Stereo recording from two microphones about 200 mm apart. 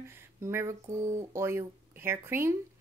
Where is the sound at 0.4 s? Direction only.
15° right (ahead or behind).